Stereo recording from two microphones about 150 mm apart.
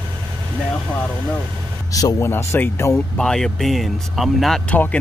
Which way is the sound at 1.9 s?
20° left (ahead or behind).